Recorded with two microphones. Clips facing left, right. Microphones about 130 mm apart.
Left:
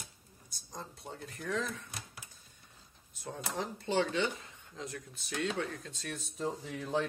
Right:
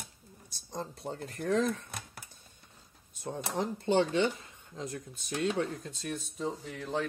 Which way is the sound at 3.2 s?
25° right (ahead or behind).